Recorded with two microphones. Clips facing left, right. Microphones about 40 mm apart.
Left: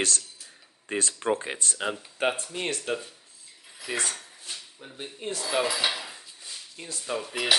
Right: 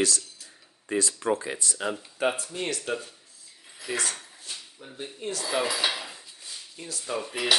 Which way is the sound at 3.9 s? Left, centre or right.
Centre.